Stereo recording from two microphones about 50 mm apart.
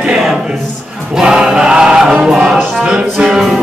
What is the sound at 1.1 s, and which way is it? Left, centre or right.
Choir, centre.